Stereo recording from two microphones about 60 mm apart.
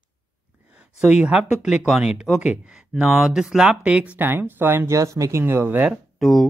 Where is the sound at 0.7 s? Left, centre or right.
Centre.